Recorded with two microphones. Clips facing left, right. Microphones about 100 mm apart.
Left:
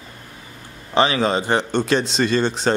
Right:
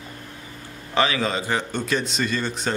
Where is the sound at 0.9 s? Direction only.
25° left (ahead or behind).